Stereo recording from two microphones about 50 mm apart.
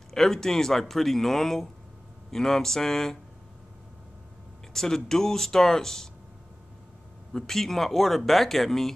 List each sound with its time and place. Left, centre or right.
0.1 s speech: centre
4.7 s speech: centre
7.3 s speech: centre